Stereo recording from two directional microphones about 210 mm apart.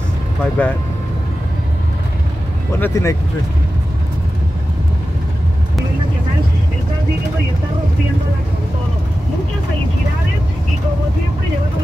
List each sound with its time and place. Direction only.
0.4 s speech: 5° left (ahead or behind)
2.8 s speech: 15° left (ahead or behind)